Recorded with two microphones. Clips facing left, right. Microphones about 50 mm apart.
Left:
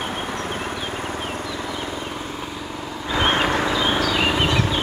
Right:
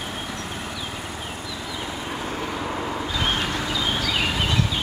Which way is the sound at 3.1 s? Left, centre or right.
Left.